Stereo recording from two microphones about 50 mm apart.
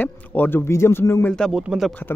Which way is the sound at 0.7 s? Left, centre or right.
Left.